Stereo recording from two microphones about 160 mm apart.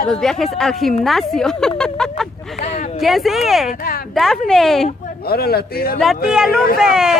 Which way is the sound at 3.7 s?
65° left (ahead or behind).